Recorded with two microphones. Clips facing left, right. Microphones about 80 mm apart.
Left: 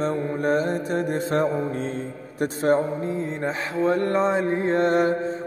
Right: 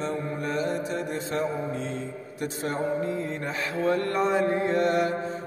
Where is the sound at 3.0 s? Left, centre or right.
Left.